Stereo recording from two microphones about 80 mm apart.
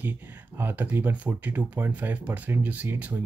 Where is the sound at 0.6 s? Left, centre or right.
Right.